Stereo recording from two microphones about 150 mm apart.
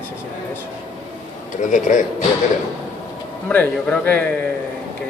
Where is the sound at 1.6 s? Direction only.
55° left (ahead or behind).